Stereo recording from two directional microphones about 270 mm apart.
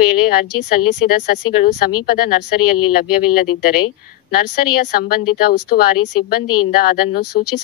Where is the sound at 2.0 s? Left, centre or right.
Left.